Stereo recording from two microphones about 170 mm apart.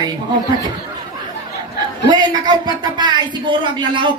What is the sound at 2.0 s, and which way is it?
Speech, 25° right (ahead or behind).